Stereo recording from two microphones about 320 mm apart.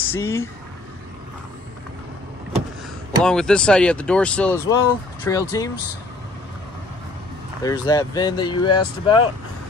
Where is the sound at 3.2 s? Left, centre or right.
Centre.